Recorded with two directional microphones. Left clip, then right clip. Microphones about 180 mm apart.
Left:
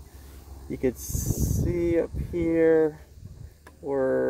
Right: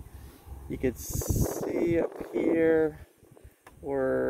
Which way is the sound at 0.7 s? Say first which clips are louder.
Left 3 dB; 10° left (ahead or behind).